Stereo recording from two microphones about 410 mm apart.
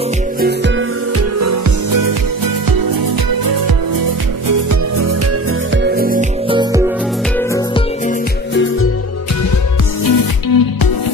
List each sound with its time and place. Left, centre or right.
1.4 s music: right
4.5 s music: right
5.8 s music: right
7.3 s music: centre
10.0 s music: left